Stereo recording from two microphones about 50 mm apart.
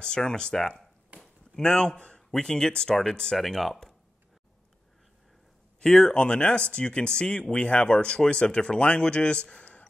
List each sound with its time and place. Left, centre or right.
0.0 s speech: centre
1.2 s chop: centre
2.1 s speech: centre
5.8 s speech: centre; by 9.8 s left